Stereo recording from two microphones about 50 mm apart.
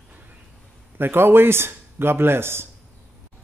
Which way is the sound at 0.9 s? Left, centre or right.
Right.